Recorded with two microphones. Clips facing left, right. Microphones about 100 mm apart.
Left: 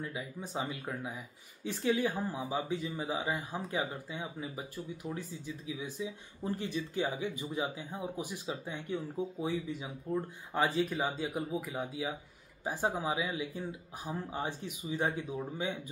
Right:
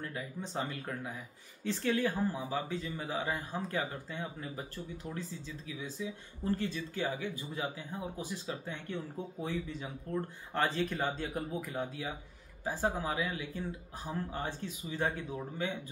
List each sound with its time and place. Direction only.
0.0 s speech: 10° left (ahead or behind)